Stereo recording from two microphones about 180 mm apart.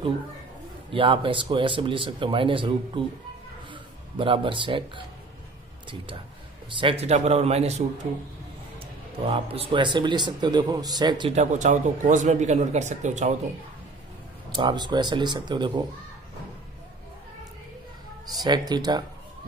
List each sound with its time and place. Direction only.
0.9 s speech: 30° right (ahead or behind)
6.7 s speech: 30° right (ahead or behind)
11.3 s speech: 45° right (ahead or behind)
14.5 s speech: 25° right (ahead or behind)
18.3 s speech: 20° right (ahead or behind)